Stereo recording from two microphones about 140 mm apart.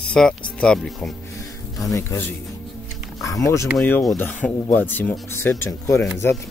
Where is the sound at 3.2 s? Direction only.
25° left (ahead or behind).